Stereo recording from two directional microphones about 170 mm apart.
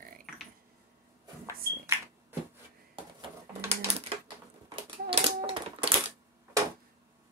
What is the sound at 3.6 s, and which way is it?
Typewriter, 35° right (ahead or behind).